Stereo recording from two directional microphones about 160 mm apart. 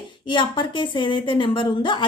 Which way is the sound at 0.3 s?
30° left (ahead or behind).